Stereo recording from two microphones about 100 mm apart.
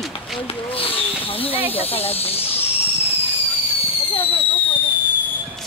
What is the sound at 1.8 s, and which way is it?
Speech, 80° left.